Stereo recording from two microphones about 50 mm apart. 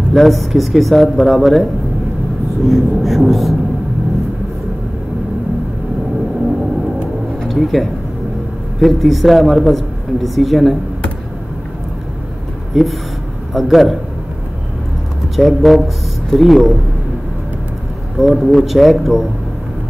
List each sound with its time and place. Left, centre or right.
0.1 s speech: centre
7.3 s a sound: centre
8.7 s speech: centre
12.7 s speech: centre
15.3 s speech: centre
18.1 s speech: centre